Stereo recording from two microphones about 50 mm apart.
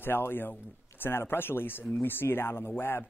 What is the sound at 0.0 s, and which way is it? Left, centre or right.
Speech, left.